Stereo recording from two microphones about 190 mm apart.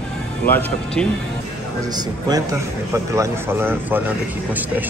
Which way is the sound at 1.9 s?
20° right (ahead or behind).